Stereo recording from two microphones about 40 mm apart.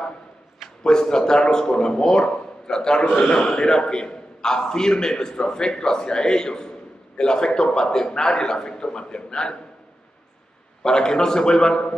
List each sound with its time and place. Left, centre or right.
0.8 s a man's voice: centre
10.8 s a man's voice: centre